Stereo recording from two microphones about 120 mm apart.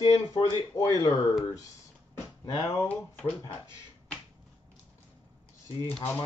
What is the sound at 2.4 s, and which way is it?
Speech, 45° left (ahead or behind).